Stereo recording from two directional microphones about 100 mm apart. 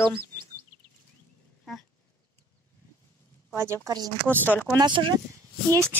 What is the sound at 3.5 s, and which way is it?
Speech, 30° right (ahead or behind).